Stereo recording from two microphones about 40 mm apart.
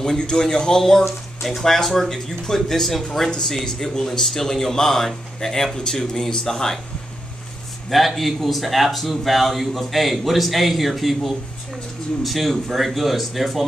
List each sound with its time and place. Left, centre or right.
0.0 s speech: centre
1.0 s speech: centre
1.6 s speech: centre
3.3 s speech: centre
7.9 s a man's voice: centre